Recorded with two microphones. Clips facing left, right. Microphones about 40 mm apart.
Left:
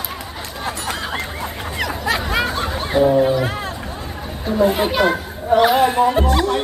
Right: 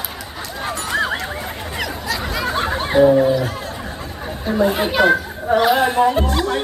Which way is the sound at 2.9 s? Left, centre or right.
Centre.